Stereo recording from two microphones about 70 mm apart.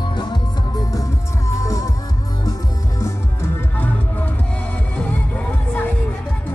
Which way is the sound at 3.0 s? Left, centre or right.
Left.